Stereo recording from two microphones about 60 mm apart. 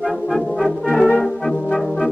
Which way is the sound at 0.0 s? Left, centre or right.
Centre.